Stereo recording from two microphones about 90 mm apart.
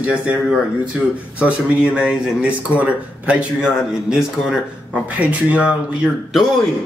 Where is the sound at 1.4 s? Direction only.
15° right (ahead or behind).